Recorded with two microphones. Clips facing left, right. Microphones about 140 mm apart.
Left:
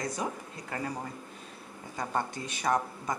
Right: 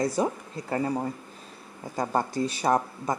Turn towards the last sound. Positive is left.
turn(degrees=-30)  # may be behind; listen again after turning